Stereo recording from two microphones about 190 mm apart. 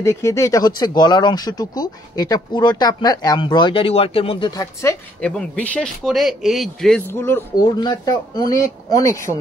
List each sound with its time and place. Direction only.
0.0 s speech: 15° left (ahead or behind)
5.2 s speech: 5° left (ahead or behind)
7.1 s speech: 10° left (ahead or behind)